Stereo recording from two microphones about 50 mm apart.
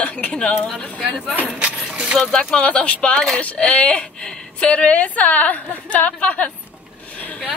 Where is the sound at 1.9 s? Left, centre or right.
Centre.